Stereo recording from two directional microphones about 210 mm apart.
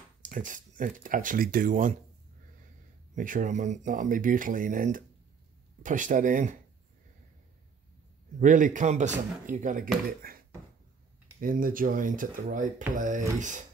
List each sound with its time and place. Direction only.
0.2 s speech: 40° right (ahead or behind)
3.2 s speech: 40° right (ahead or behind)
8.4 s speech: 40° right (ahead or behind)
11.4 s speech: 40° right (ahead or behind)